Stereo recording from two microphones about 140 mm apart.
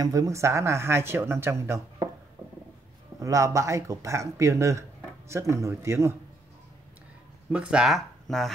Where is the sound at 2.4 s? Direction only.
20° right (ahead or behind).